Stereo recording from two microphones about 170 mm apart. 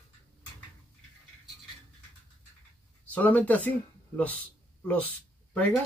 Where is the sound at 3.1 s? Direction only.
10° left (ahead or behind).